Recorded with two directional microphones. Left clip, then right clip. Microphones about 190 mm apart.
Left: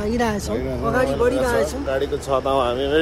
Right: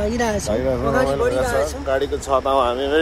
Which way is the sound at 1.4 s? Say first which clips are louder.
Even; 20° left (ahead or behind).